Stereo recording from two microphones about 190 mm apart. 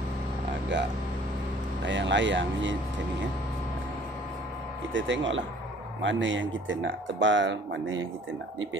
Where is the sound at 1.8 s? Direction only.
70° right (ahead or behind).